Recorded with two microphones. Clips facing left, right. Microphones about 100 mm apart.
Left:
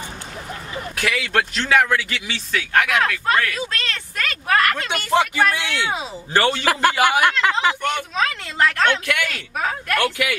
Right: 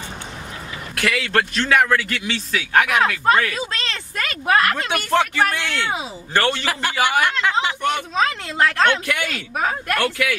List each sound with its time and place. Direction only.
0.9 s speech: centre (ahead or behind)
2.7 s speech: 15° right (ahead or behind)
5.1 s speech: 10° left (ahead or behind)
6.6 s speech: 50° left (ahead or behind)
7.8 s speech: 20° right (ahead or behind)
9.9 s speech: 10° left (ahead or behind)